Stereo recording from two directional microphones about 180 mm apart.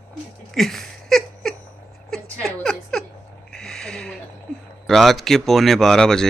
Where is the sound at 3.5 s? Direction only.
Centre (ahead or behind).